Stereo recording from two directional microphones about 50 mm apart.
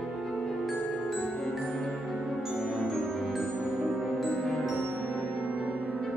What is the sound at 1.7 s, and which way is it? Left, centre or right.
Music, centre.